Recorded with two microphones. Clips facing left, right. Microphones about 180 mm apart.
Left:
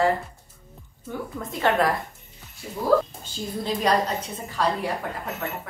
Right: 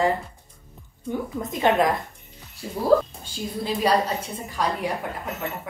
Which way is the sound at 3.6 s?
10° right (ahead or behind).